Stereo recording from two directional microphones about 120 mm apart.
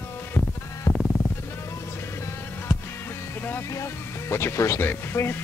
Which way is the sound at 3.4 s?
20° left (ahead or behind).